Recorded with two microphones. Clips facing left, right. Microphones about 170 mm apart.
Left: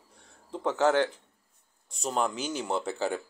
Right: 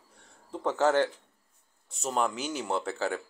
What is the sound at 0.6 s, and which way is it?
Speech, 10° right (ahead or behind).